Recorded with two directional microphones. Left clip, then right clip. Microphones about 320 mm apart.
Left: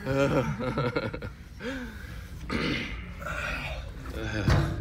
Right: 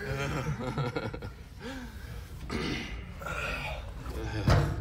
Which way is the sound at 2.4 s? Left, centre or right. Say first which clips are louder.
Left 5 dB; centre.